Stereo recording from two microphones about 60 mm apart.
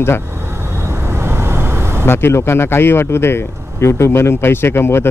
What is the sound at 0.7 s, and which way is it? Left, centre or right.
Vehicle, right.